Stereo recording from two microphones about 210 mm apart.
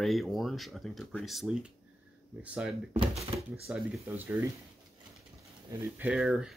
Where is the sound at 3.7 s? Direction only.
5° right (ahead or behind).